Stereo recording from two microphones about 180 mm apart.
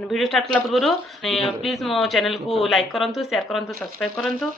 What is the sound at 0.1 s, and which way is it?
Speech, centre (ahead or behind).